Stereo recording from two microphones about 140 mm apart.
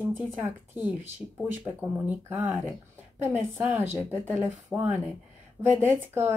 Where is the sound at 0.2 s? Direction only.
15° right (ahead or behind).